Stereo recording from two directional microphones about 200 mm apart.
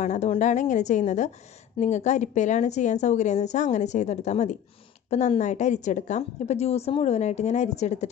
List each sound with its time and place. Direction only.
0.0 s a woman's voice: 35° left (ahead or behind)